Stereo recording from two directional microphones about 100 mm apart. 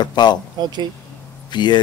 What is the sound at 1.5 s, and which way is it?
Speech, 50° left (ahead or behind).